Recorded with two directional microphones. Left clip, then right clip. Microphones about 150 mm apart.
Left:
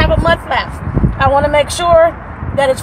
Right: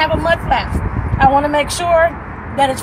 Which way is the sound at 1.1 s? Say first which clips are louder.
Left 1 dB; 60° left (ahead or behind).